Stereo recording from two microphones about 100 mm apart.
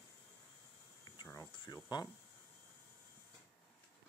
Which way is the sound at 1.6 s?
40° left (ahead or behind).